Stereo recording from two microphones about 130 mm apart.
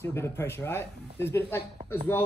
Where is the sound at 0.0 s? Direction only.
20° left (ahead or behind).